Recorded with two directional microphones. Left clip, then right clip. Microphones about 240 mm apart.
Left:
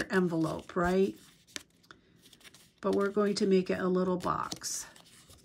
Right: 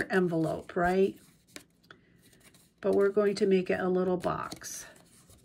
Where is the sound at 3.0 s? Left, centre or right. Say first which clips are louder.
Right 5 dB; left.